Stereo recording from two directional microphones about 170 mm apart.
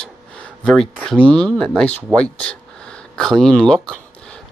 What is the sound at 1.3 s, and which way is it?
Speech, 25° right (ahead or behind).